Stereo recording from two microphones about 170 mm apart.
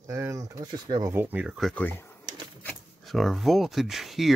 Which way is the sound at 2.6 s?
Centre (ahead or behind).